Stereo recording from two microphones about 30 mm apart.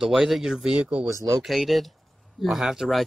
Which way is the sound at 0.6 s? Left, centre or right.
Right.